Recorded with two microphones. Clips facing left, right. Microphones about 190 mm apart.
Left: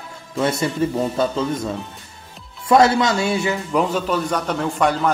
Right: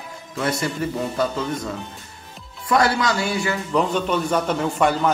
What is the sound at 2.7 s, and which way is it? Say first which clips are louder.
Speech: left 5 dB; 25° left (ahead or behind).